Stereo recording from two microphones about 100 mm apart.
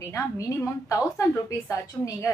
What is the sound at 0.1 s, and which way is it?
A woman's voice, 35° left (ahead or behind).